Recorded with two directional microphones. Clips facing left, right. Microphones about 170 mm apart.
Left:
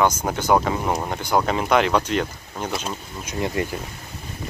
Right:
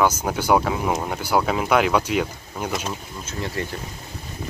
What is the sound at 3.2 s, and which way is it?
Speech, 15° left (ahead or behind).